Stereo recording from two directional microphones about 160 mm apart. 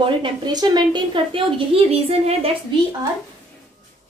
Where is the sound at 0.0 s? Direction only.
30° right (ahead or behind).